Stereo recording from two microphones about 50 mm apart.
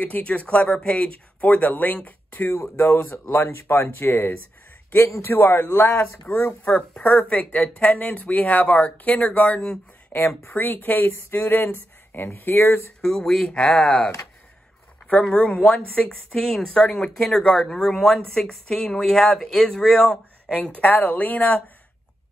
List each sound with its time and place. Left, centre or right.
0.0 s speech: left
2.3 s speech: left
2.8 s speech: left
6.3 s speech: left
10.1 s speech: left
13.2 s speech: centre
15.3 s speech: left
16.3 s speech: centre
16.7 s speech: left
20.7 s speech: left